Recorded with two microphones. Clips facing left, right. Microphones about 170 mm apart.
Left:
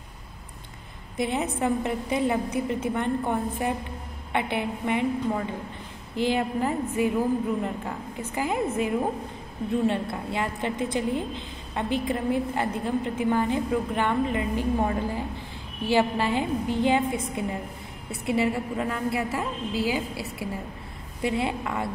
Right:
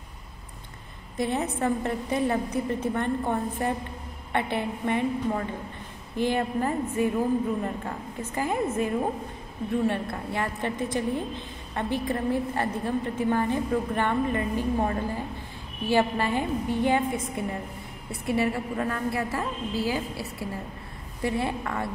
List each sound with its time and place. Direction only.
1.1 s a woman's voice: 15° left (ahead or behind)